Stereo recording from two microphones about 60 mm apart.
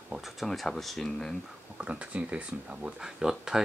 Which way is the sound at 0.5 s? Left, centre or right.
Centre.